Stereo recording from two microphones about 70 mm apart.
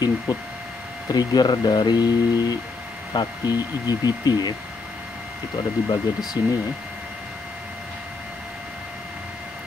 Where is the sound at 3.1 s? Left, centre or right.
Left.